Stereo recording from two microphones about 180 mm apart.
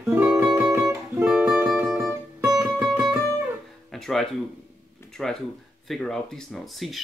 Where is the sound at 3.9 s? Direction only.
Centre (ahead or behind).